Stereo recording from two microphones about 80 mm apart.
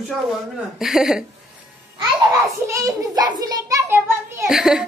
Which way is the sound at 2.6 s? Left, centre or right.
Right.